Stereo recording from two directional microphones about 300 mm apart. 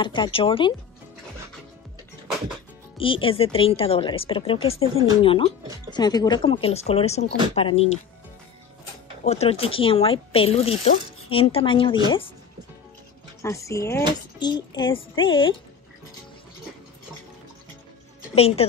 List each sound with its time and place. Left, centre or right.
0.0 s speech: centre
3.0 s speech: centre
9.2 s speech: left
13.4 s speech: centre
18.3 s a woman's voice: centre